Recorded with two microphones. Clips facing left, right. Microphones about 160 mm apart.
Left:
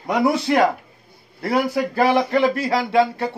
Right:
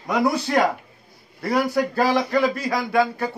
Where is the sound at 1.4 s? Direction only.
25° left (ahead or behind).